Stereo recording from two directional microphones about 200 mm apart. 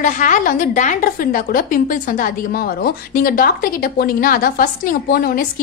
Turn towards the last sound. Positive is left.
turn(degrees=45)  # may be behind; listen again after turning